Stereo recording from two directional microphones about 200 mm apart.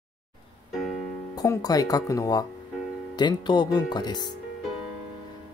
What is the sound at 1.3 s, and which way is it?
Speech, 20° left (ahead or behind).